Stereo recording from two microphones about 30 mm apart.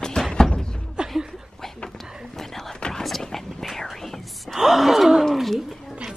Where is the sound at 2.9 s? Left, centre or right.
Centre.